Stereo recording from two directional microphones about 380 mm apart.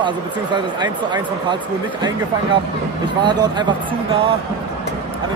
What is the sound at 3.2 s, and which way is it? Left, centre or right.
Speech, centre.